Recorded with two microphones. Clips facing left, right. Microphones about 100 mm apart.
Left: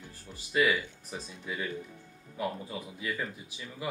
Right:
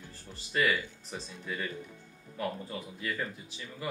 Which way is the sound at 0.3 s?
10° left (ahead or behind).